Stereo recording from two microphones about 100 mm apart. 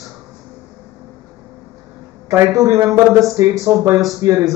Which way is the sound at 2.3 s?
35° right (ahead or behind).